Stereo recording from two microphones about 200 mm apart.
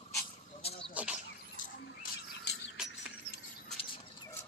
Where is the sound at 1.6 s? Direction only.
50° left (ahead or behind).